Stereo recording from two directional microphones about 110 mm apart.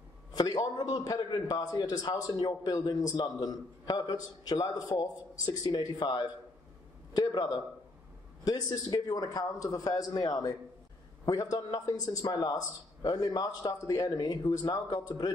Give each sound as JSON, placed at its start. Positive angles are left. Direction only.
{"t": 0.4, "sound": "a man's voice", "side_deg": 35}